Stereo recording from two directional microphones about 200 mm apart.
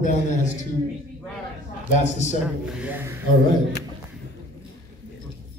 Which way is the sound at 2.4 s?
5° right (ahead or behind).